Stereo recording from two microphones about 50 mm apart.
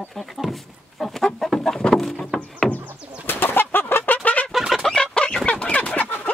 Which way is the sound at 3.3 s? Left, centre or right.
Left.